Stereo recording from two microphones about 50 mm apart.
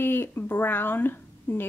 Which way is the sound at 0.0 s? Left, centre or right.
Left.